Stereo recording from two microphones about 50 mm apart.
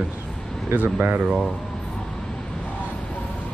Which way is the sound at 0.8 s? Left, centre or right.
Right.